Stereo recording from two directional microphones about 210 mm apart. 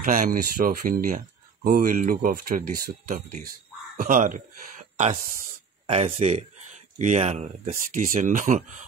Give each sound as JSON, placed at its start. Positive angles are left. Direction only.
{"t": 0.0, "sound": "speech", "side_deg": -40}